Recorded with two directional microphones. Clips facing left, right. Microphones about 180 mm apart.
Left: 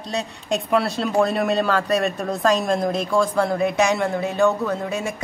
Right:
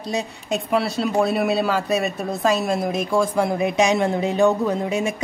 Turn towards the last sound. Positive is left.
turn(degrees=-15)  # may be behind; listen again after turning